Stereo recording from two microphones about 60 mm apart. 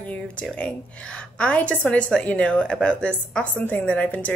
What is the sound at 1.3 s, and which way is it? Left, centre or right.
A woman's voice, left.